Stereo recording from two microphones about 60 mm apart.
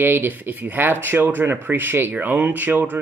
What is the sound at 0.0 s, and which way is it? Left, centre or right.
Speech, right.